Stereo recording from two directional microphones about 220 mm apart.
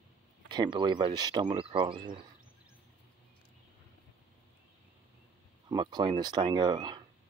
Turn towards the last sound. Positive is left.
turn(degrees=-20)  # may be behind; listen again after turning